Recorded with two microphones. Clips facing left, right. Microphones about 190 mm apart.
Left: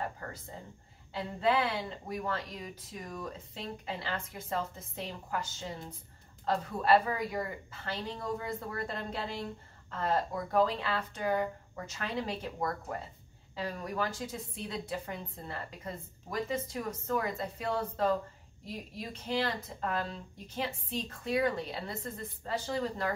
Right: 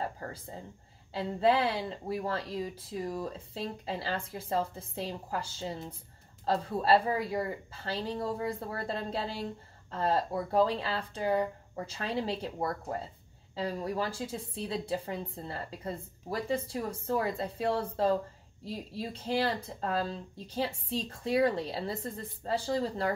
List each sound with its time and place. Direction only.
0.0 s a woman's voice: 30° right (ahead or behind)